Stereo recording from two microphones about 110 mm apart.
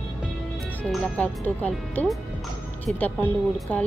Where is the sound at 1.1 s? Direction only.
15° left (ahead or behind).